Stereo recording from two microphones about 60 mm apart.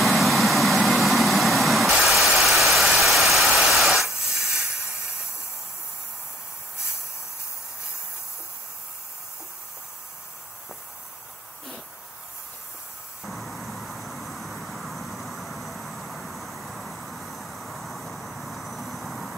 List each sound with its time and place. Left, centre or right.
0.0 s vehicle: centre
3.0 s static: centre
4.4 s hiss: centre
13.2 s vehicle: centre